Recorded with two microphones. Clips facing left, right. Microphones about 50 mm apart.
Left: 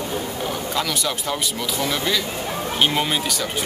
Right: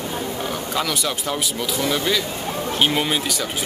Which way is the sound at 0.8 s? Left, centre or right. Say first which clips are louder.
Right 1 dB; centre.